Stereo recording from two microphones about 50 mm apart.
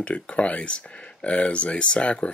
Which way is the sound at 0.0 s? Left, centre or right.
Left.